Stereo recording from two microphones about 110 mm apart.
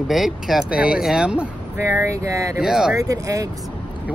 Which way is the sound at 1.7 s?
25° right (ahead or behind).